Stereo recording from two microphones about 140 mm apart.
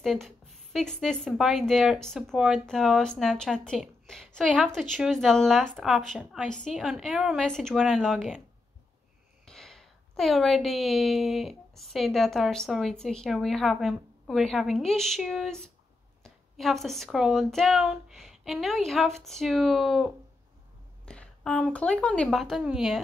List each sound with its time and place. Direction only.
0.0 s a woman's voice: centre (ahead or behind)
9.5 s a woman's voice: 5° left (ahead or behind)